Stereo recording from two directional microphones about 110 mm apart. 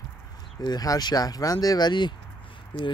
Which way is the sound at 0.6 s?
35° left (ahead or behind).